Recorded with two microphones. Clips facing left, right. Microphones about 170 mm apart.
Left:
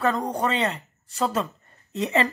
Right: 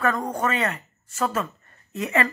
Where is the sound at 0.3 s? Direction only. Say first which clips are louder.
Even; 25° left (ahead or behind).